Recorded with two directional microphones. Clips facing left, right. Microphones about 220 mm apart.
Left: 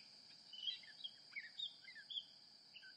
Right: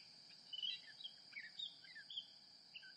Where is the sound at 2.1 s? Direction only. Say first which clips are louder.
Even; 25° right (ahead or behind).